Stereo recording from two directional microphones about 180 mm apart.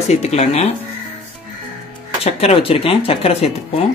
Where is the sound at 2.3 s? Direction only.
35° left (ahead or behind).